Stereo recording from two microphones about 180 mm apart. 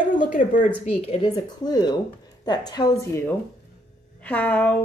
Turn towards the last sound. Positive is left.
turn(degrees=10)  # may be behind; listen again after turning